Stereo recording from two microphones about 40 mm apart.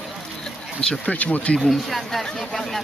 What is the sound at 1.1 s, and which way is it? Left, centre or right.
Speech, left.